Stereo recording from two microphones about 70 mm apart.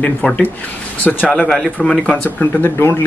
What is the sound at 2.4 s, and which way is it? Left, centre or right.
Speech, left.